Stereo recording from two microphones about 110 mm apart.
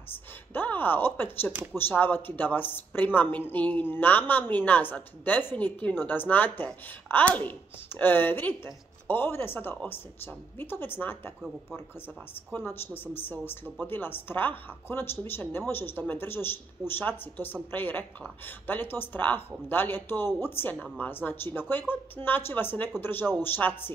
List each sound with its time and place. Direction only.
0.1 s speech: 15° left (ahead or behind)
12.5 s speech: 20° left (ahead or behind)